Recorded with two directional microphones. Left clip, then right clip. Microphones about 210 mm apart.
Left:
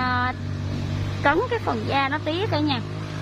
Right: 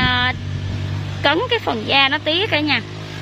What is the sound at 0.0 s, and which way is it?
Vehicle, 10° right (ahead or behind).